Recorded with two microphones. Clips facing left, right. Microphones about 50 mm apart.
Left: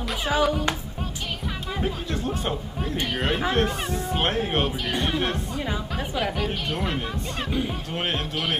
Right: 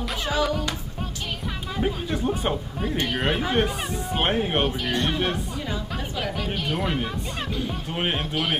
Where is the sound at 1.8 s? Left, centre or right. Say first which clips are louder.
Right 4 dB; centre.